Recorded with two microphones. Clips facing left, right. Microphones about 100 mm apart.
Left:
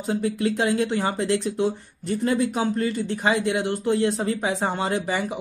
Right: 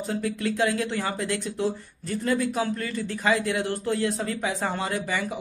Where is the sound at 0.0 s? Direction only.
25° left (ahead or behind).